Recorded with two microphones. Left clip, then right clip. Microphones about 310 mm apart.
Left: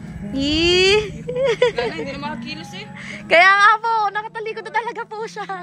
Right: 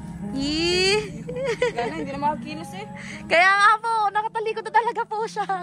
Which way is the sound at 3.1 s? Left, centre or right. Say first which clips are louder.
Left 5 dB; centre.